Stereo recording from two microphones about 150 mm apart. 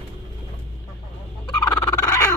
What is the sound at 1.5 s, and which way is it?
Frog, 25° left (ahead or behind).